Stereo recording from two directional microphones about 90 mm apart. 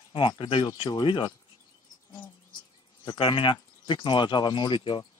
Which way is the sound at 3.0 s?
65° left (ahead or behind).